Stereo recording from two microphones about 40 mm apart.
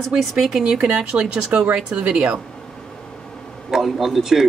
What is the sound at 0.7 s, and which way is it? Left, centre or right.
Speech, right.